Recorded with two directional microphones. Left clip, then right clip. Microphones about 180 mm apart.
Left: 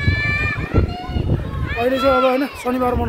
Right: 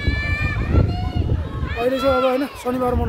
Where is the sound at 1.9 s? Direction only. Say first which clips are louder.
Left 3 dB; 45° left (ahead or behind).